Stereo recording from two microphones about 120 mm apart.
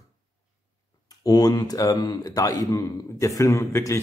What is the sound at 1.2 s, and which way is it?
Speech, 30° left (ahead or behind).